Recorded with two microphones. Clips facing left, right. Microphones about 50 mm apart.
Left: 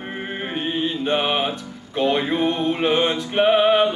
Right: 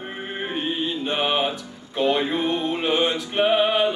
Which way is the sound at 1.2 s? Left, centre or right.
Centre.